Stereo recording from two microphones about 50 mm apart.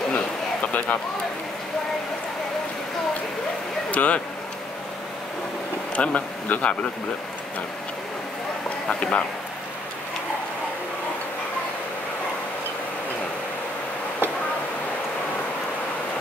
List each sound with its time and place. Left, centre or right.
0.1 s a sound: left
3.9 s speech: left
5.9 s speech: left
8.8 s speech: left